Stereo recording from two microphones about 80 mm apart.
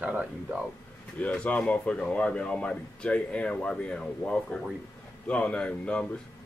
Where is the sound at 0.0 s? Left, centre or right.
Centre.